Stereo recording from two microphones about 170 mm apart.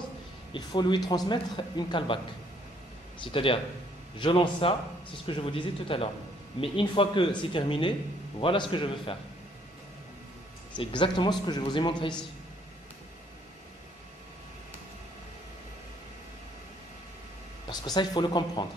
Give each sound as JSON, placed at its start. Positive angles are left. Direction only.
{"t": 0.5, "sound": "speech", "side_deg": 25}
{"t": 3.3, "sound": "speech", "side_deg": 30}
{"t": 10.8, "sound": "speech", "side_deg": 25}
{"t": 17.6, "sound": "speech", "side_deg": 25}